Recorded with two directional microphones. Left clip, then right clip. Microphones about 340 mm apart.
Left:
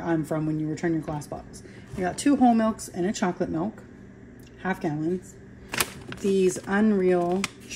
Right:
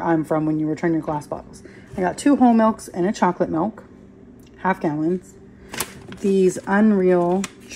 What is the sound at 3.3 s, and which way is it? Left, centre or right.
Speech, right.